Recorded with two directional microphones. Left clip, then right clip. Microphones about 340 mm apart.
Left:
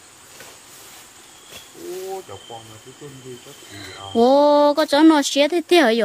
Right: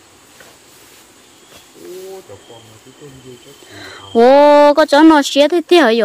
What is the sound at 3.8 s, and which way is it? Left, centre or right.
Speech, centre.